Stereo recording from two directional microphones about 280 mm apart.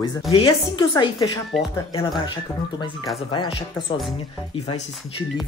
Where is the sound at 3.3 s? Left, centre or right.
Centre.